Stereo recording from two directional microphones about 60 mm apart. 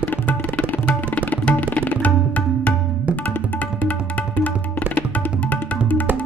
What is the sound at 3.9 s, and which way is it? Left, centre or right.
Tabla, left.